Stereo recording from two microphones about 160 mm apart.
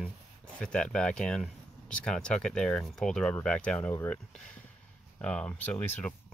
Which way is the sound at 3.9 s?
15° left (ahead or behind).